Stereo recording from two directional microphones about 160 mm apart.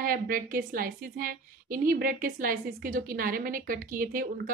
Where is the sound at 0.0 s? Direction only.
60° right (ahead or behind).